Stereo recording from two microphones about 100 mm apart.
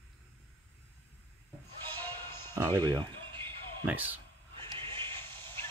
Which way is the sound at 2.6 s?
35° right (ahead or behind).